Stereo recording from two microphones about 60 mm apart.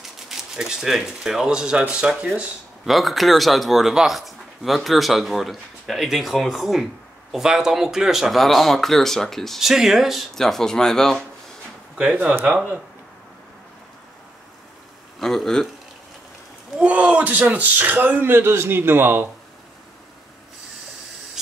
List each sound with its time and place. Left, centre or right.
0.3 s speech: centre
2.8 s speech: centre
10.3 s speech: centre
15.1 s speech: centre
16.8 s speech: right